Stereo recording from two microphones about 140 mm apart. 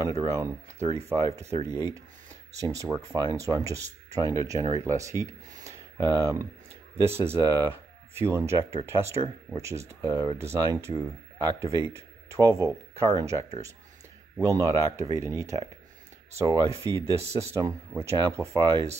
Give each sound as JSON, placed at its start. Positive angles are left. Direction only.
{"t": 0.2, "sound": "speech", "side_deg": -20}